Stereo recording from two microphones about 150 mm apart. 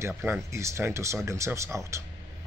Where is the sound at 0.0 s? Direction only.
15° right (ahead or behind).